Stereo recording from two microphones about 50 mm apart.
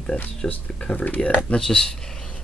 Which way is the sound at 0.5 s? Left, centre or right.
Left.